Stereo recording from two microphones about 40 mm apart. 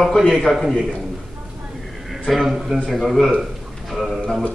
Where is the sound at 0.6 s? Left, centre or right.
Centre.